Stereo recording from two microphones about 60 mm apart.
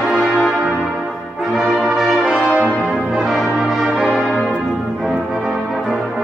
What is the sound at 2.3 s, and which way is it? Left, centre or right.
Brass instrument, right.